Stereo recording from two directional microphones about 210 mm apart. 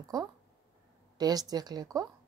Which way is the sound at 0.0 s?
15° right (ahead or behind).